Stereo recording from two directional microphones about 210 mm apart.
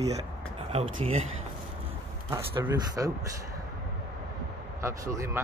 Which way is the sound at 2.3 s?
15° right (ahead or behind).